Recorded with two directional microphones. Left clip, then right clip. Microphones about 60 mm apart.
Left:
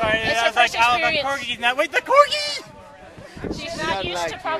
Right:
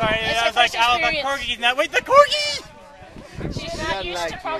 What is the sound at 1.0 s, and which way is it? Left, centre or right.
Speech, left.